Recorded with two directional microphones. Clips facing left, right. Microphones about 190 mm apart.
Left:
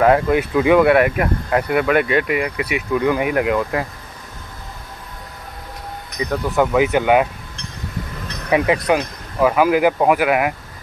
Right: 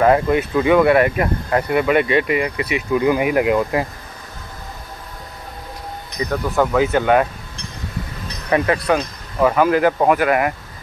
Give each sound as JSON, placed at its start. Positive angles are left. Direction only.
{"t": 0.0, "sound": "speech", "side_deg": 5}
{"t": 2.9, "sound": "speech", "side_deg": -10}
{"t": 6.2, "sound": "speech", "side_deg": 15}
{"t": 8.5, "sound": "speech", "side_deg": 15}